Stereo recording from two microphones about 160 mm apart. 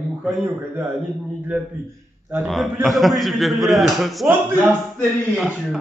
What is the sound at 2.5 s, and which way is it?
A man's voice, centre (ahead or behind).